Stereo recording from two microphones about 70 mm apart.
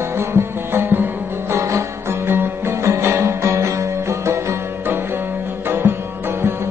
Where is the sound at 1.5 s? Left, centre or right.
Right.